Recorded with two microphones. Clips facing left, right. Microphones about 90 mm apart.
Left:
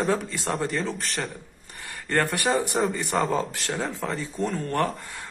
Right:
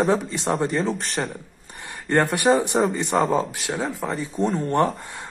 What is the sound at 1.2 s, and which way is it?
Speech, 30° right (ahead or behind).